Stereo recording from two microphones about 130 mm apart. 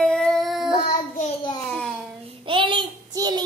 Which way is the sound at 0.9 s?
80° left.